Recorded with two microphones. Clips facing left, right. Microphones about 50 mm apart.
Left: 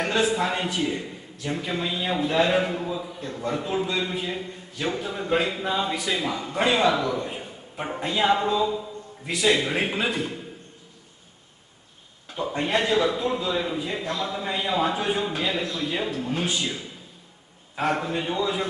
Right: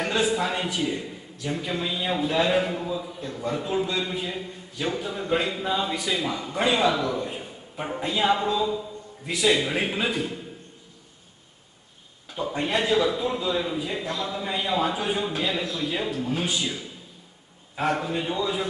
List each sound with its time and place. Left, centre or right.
0.0 s a man's voice: centre
12.3 s a man's voice: centre